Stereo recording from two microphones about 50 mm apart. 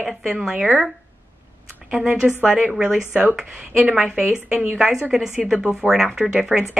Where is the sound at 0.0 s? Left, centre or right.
Centre.